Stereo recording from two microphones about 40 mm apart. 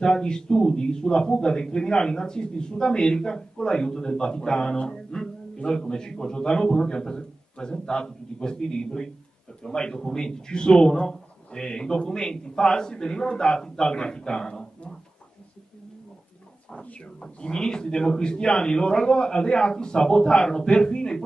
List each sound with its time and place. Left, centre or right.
0.0 s a man's voice: centre
17.2 s a man's voice: centre